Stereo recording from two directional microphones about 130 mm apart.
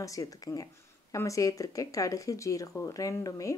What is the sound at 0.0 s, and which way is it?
Speech, 25° left (ahead or behind).